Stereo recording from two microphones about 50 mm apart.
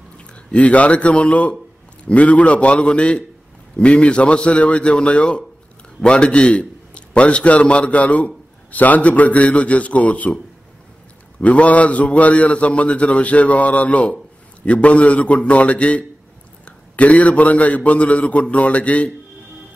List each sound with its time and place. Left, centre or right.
0.3 s a man's voice: left
11.4 s a man's voice: left